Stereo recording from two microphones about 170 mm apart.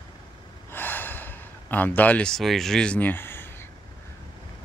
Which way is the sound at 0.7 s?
10° left (ahead or behind).